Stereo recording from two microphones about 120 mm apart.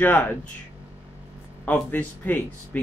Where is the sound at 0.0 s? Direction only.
15° left (ahead or behind).